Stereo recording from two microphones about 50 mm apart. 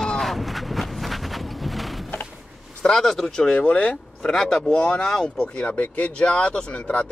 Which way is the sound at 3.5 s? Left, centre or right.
Left.